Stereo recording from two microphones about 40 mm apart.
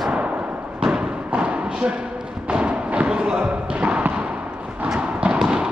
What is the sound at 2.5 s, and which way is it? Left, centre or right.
Music, right.